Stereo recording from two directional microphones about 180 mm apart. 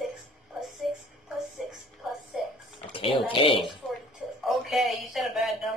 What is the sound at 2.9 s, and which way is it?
Speech, 30° left (ahead or behind).